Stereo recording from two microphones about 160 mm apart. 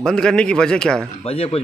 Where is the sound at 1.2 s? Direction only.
40° left (ahead or behind).